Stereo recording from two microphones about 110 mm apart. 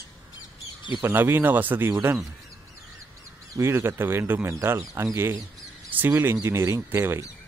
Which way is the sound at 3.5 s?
25° right (ahead or behind).